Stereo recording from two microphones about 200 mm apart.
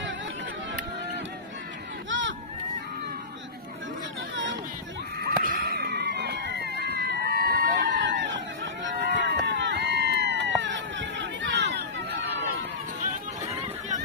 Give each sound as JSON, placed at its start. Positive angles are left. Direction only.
{"t": 2.0, "sound": "run", "side_deg": -65}
{"t": 5.2, "sound": "a sound", "side_deg": -50}
{"t": 8.0, "sound": "crowd", "side_deg": -65}
{"t": 8.8, "sound": "run", "side_deg": -60}